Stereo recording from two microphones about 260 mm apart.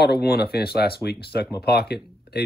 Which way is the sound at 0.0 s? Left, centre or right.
Left.